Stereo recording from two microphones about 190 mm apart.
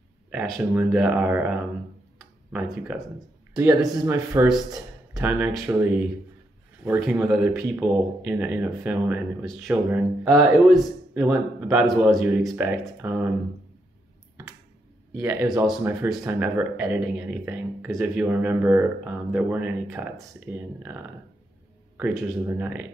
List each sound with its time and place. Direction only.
0.6 s speech: 10° right (ahead or behind)
2.1 s a sound: 5° right (ahead or behind)
3.5 s speech: 15° right (ahead or behind)
11.9 s a man's voice: centre (ahead or behind)
15.1 s speech: 10° right (ahead or behind)